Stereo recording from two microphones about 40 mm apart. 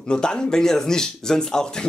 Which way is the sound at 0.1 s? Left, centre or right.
Centre.